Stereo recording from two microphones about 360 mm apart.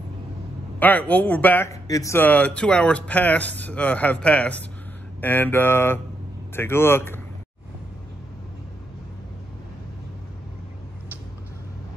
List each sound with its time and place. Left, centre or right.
0.7 s speech: centre